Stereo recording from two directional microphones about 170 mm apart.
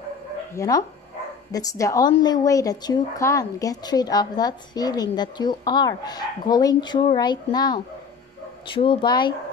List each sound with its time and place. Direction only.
0.6 s speech: 20° left (ahead or behind)